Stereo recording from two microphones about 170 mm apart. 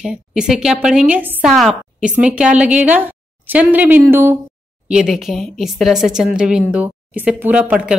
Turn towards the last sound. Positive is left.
turn(degrees=-5)  # may be behind; listen again after turning